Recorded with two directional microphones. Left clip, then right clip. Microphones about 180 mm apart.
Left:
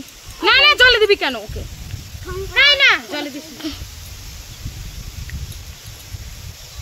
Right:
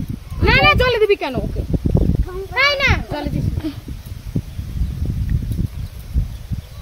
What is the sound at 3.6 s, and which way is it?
Speech, 20° right (ahead or behind).